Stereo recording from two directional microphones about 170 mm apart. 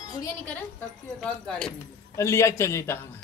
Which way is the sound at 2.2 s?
15° left (ahead or behind).